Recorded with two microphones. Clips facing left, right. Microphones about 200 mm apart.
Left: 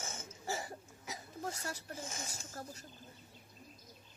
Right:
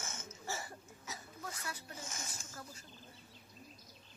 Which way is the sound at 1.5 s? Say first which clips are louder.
Left 3 dB; 35° left (ahead or behind).